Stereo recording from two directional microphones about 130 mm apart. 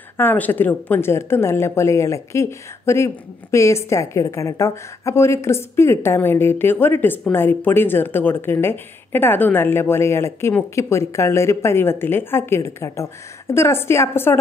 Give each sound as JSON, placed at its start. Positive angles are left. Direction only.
{"t": 0.2, "sound": "speech", "side_deg": 15}